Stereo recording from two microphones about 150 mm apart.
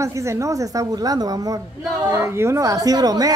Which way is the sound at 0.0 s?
20° right (ahead or behind).